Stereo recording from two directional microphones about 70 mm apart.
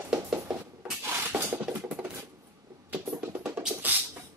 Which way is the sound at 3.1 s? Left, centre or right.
Centre.